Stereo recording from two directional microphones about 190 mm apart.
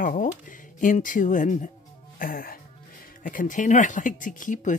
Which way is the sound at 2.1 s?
50° left (ahead or behind).